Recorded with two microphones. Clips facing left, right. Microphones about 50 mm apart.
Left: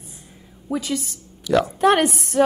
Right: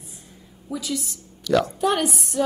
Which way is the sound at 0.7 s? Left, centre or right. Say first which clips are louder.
Left 4 dB; left.